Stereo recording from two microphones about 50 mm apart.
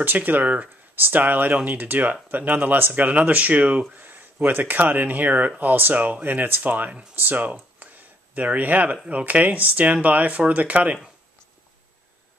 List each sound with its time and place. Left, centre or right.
0.0 s speech: right
3.9 s speech: right
7.8 s a sound: right
9.0 s speech: right